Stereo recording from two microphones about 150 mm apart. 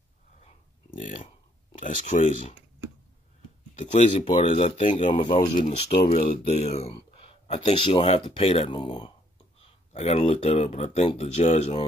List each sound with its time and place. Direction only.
1.8 s speech: 55° left (ahead or behind)
3.7 s speech: 45° left (ahead or behind)
9.6 s speech: 45° left (ahead or behind)